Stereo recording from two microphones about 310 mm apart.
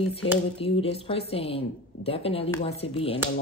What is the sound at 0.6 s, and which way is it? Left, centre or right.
A woman's voice, centre.